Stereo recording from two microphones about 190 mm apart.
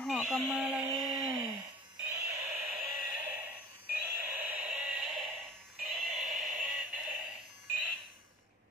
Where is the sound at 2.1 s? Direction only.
20° right (ahead or behind).